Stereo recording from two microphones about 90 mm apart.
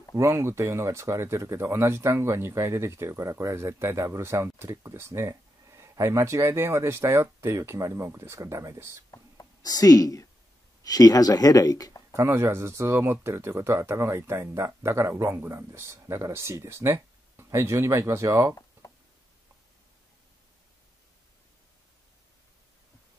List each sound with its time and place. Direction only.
0.1 s speech: 35° right (ahead or behind)
9.1 s a sound: 40° left (ahead or behind)
10.8 s speech: 40° left (ahead or behind)
12.1 s speech: 30° right (ahead or behind)